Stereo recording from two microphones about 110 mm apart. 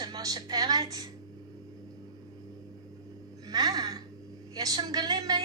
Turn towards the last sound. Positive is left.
turn(degrees=-35)  # may be behind; listen again after turning